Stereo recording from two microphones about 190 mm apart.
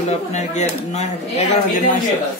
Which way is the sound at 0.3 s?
35° left (ahead or behind).